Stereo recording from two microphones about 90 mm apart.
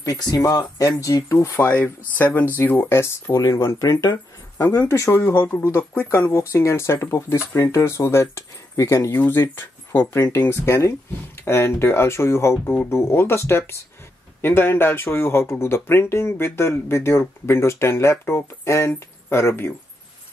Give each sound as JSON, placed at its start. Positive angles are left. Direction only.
{"t": 0.3, "sound": "speech", "side_deg": 45}
{"t": 5.2, "sound": "speech", "side_deg": 20}